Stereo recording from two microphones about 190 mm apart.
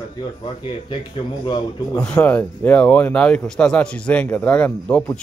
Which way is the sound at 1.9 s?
5° left (ahead or behind).